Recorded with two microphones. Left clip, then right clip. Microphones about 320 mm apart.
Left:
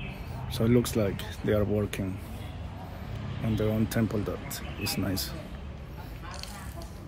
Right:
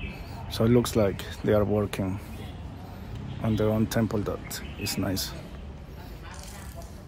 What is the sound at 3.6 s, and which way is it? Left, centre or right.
Speech, centre.